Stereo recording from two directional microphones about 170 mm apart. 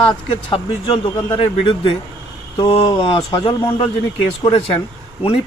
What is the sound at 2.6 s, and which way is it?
Speech, 35° left (ahead or behind).